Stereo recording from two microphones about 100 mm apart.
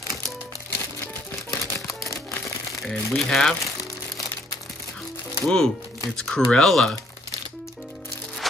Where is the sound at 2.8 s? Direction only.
5° left (ahead or behind).